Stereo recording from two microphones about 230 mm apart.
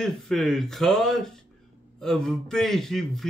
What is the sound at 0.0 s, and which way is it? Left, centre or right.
Speech, centre.